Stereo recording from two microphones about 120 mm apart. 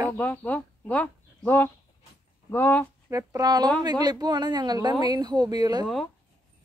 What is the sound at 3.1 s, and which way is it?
Speech, 30° right (ahead or behind).